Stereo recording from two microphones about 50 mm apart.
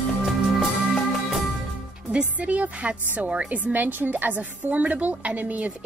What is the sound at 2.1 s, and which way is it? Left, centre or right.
A woman's voice, right.